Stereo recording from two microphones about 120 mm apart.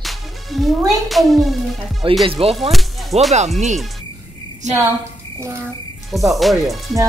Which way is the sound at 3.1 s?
65° right (ahead or behind).